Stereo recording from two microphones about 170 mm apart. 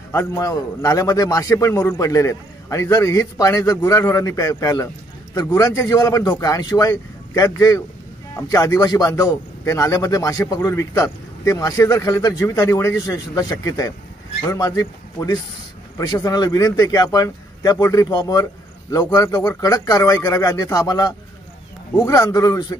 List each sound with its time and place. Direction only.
0.1 s a man's voice: 20° left (ahead or behind)